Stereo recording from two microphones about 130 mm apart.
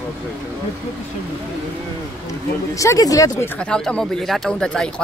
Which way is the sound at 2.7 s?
25° left (ahead or behind).